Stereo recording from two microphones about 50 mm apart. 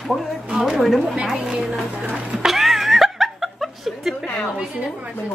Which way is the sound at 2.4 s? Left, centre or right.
Centre.